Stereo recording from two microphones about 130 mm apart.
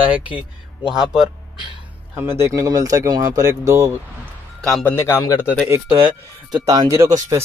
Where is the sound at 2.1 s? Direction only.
20° right (ahead or behind).